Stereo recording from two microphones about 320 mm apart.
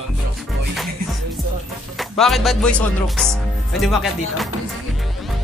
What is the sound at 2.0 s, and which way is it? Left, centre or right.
Speech, centre.